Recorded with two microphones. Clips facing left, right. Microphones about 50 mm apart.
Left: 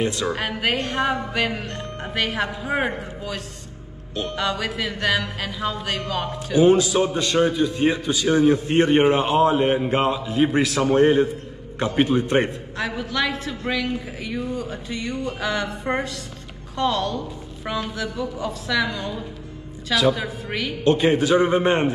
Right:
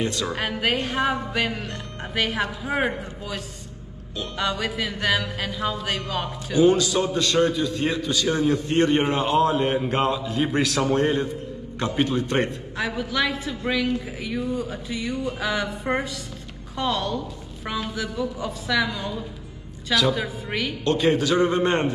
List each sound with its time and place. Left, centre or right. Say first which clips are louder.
0.0 s a man's voice: left 3 dB; centre
0.4 s a sound: left 1 dB; centre
6.8 s a man's voice: left 2 dB; centre
7.6 s a man's voice: left 4 dB; centre
10.9 s a man's voice: left 5 dB; centre
12.7 s a sound: even; centre
20.8 s a man's voice: left 3 dB; centre